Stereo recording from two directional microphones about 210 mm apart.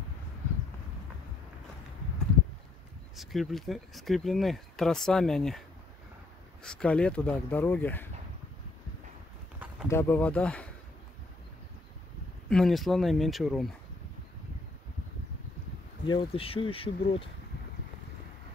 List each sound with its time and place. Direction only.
3.2 s speech: centre (ahead or behind)
6.6 s speech: 5° left (ahead or behind)
9.8 s speech: 10° left (ahead or behind)
12.4 s speech: centre (ahead or behind)
16.1 s speech: 25° left (ahead or behind)